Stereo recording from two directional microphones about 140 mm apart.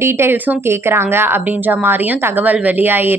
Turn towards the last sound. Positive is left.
turn(degrees=-15)  # may be behind; listen again after turning